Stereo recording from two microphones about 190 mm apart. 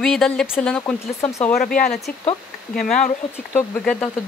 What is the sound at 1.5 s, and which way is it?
Speech, 45° left (ahead or behind).